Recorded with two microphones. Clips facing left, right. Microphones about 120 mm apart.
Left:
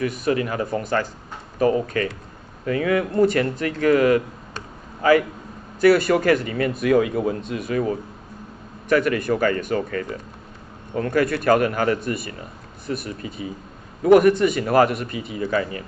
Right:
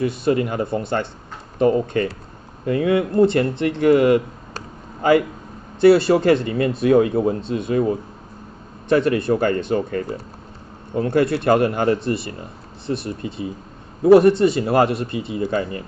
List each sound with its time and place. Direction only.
0.0 s speech: 30° right (ahead or behind)
2.6 s speech: 25° right (ahead or behind)
4.6 s a sound: 25° right (ahead or behind)
5.8 s speech: 30° right (ahead or behind)
8.8 s speech: 25° right (ahead or behind)